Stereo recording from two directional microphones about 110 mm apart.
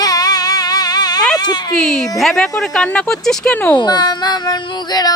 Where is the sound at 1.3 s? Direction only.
40° left (ahead or behind).